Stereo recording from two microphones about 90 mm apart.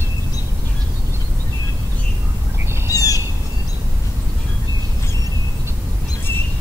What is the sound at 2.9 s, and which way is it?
Bird, 40° left (ahead or behind).